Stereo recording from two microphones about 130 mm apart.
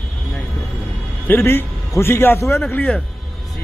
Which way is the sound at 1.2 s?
15° left (ahead or behind).